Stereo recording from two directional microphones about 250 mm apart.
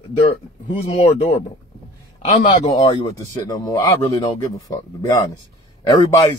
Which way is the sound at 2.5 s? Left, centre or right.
Left.